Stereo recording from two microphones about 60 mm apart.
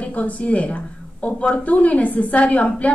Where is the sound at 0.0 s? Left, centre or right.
Left.